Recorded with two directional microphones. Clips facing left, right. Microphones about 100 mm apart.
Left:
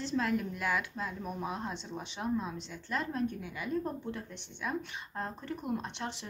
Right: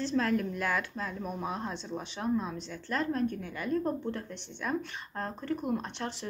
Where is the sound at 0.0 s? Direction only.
15° left (ahead or behind).